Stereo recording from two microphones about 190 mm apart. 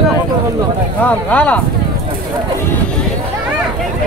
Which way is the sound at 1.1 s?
5° left (ahead or behind).